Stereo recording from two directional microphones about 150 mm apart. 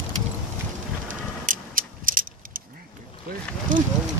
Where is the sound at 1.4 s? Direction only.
70° right (ahead or behind).